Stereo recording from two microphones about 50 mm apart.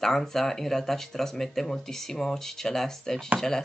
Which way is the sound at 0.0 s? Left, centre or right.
Centre.